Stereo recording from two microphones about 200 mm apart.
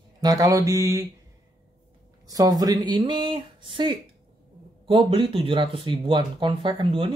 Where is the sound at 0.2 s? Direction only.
20° right (ahead or behind).